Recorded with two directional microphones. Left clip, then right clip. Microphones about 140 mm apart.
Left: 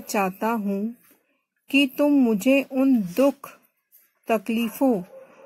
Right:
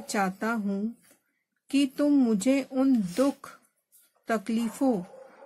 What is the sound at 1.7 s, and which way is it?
Speech, 45° left (ahead or behind).